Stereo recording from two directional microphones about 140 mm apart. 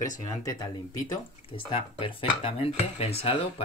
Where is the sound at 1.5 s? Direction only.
40° left (ahead or behind).